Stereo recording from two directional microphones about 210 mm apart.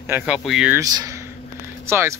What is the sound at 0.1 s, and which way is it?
Speech, 5° right (ahead or behind).